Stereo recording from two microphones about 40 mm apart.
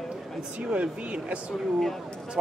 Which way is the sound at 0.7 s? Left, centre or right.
Right.